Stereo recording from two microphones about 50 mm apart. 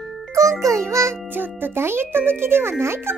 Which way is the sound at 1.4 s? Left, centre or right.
Right.